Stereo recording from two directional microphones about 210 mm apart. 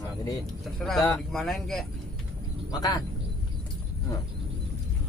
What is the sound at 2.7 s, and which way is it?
Speech, 20° left (ahead or behind).